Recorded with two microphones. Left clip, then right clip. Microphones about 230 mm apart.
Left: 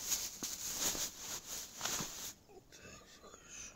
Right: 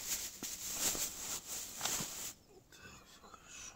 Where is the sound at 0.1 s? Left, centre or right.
Centre.